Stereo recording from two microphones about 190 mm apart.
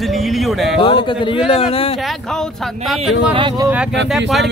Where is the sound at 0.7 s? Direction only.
25° left (ahead or behind).